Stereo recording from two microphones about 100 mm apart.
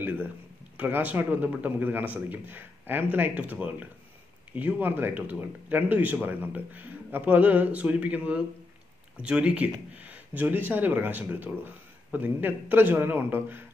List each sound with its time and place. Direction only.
0.7 s speech: 15° right (ahead or behind)